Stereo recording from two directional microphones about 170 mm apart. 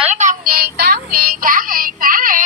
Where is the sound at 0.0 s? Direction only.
45° right (ahead or behind).